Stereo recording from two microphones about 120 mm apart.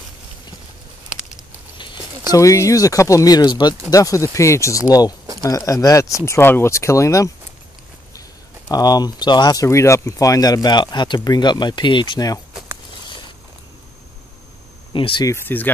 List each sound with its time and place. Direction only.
2.3 s speech: 25° left (ahead or behind)
14.9 s speech: 45° left (ahead or behind)
15.2 s speech: 20° left (ahead or behind)